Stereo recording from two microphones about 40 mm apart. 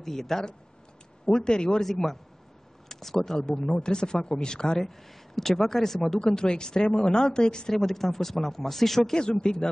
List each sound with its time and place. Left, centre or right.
0.0 s speech: centre
1.8 s speech: centre
3.3 s speech: centre
4.7 s speech: centre
7.7 s speech: centre
9.1 s speech: centre